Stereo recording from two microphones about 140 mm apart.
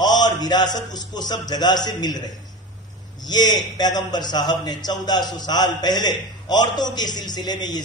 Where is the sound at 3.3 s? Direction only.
30° left (ahead or behind).